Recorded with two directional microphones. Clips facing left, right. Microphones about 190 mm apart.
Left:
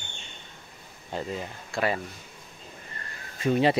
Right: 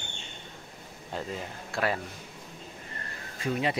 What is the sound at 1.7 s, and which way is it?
Speech, centre (ahead or behind).